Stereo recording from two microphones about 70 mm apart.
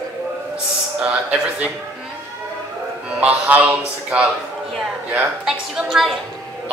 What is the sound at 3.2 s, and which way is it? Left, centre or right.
Speech, right.